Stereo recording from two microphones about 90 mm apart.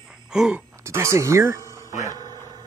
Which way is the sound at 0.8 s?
35° right (ahead or behind).